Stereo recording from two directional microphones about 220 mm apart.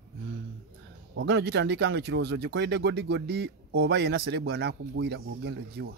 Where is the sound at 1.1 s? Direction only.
50° right (ahead or behind).